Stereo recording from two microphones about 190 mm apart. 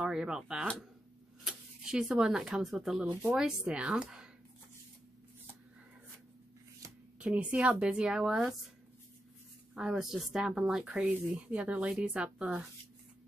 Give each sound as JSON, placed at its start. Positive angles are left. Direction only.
{"t": 0.0, "sound": "speech", "side_deg": -5}
{"t": 6.8, "sound": "a sound", "side_deg": -15}
{"t": 7.2, "sound": "speech", "side_deg": -5}
{"t": 9.8, "sound": "speech", "side_deg": -5}